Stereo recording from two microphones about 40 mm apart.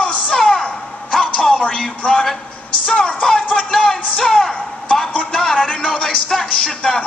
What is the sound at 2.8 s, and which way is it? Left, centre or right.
Speech, left.